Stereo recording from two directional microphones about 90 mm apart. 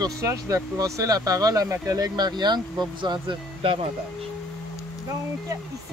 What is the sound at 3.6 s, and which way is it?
Speech, 90° right.